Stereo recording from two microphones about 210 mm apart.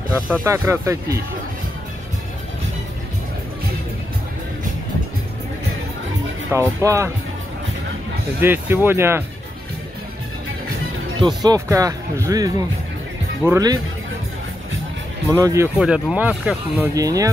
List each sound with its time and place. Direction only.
0.3 s speech: 15° right (ahead or behind)
6.5 s speech: 15° right (ahead or behind)
8.4 s speech: 10° right (ahead or behind)
11.1 s speech: 20° right (ahead or behind)
15.2 s speech: 15° right (ahead or behind)